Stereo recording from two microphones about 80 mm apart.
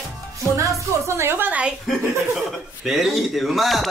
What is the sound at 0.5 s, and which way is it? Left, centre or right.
A woman's voice, right.